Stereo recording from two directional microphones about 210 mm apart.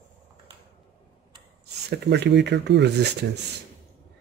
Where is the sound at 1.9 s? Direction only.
55° right (ahead or behind).